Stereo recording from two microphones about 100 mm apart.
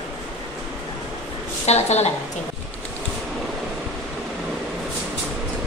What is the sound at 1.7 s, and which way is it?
Speech, 90° left.